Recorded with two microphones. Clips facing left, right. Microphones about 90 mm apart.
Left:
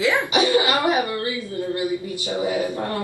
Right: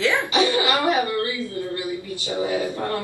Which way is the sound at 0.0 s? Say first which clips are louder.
Left 1 dB; 20° left (ahead or behind).